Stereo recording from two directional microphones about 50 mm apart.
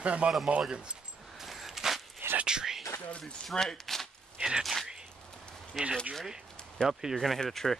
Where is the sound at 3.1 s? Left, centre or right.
Left.